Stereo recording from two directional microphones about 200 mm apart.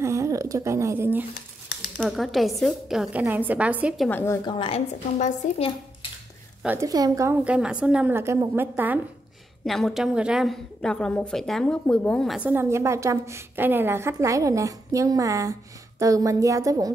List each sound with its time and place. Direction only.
0.0 s a sound: 15° right (ahead or behind)
2.0 s a woman's voice: centre (ahead or behind)
4.1 s a woman's voice: 10° left (ahead or behind)
4.5 s a woman's voice: 25° left (ahead or behind)
6.6 s speech: 10° right (ahead or behind)
9.7 s speech: centre (ahead or behind); by 16.9 s 15° right (ahead or behind)